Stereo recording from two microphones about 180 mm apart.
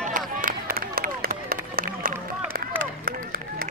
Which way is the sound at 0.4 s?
50° right (ahead or behind).